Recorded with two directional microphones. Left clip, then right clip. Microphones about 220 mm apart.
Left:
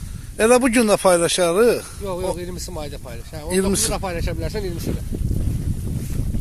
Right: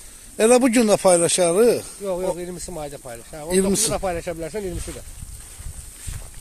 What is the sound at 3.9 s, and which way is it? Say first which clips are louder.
Speech: right 1 dB; 55° left (ahead or behind).